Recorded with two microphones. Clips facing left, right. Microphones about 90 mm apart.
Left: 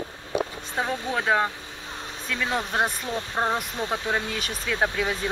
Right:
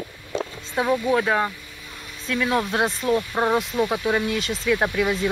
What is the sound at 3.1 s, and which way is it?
Speech, 15° right (ahead or behind).